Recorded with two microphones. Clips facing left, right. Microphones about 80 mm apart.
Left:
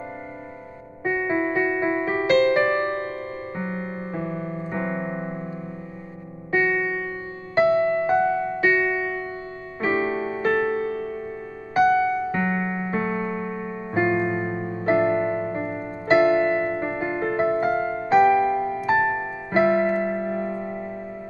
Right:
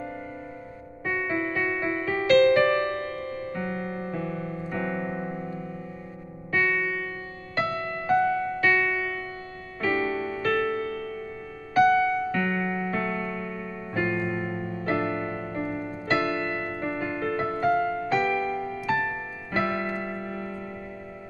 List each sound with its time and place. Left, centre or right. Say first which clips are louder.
1.0 s music: left 5 dB; left